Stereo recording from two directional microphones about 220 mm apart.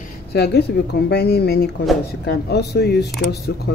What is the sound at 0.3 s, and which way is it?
Speech, 45° left (ahead or behind).